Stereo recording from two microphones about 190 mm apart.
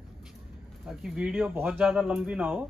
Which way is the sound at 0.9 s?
5° right (ahead or behind).